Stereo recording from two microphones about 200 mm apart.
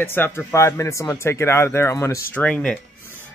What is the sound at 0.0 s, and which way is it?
Speech, 10° left (ahead or behind).